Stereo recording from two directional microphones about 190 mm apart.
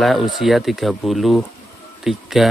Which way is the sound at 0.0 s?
Centre (ahead or behind).